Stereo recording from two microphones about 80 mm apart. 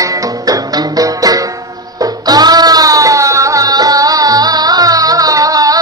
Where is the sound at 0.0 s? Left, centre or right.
Right.